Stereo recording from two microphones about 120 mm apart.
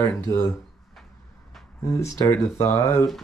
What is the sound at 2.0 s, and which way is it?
Speech, 25° left (ahead or behind).